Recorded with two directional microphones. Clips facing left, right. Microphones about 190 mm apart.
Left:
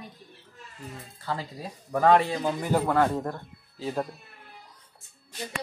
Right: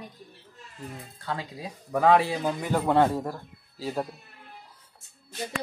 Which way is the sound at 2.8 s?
20° right (ahead or behind).